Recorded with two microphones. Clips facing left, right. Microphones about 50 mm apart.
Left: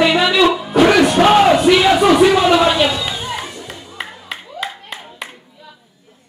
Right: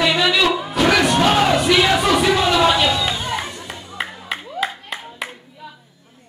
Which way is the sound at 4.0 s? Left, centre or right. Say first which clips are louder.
Right 3 dB; centre.